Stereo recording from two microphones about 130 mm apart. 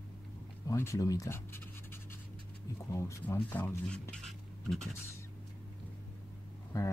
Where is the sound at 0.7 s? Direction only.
25° left (ahead or behind).